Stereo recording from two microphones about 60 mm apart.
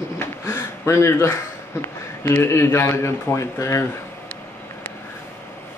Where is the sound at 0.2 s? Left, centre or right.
Left.